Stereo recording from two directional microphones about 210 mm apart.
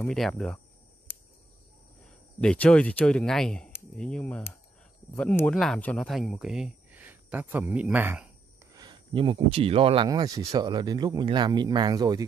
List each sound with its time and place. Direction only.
0.0 s speech: 5° left (ahead or behind)
2.4 s speech: 5° left (ahead or behind)
8.7 s speech: 20° right (ahead or behind)